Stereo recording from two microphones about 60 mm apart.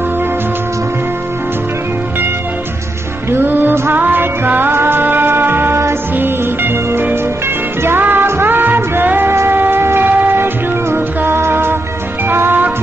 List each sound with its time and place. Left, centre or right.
3.3 s music: right